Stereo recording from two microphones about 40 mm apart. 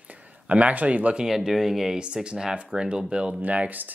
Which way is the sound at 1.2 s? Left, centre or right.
Centre.